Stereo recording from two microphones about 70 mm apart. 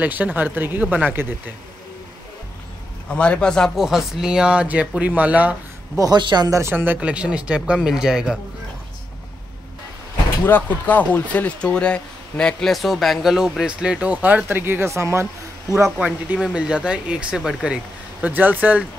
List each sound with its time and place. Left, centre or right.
0.0 s speech: right
3.1 s a man's voice: centre
3.7 s speech: centre; by 5.6 s right
5.9 s speech: right
6.7 s speech: right
7.0 s speech: centre
10.4 s speech: left; by 15.2 s right
16.0 s speech: centre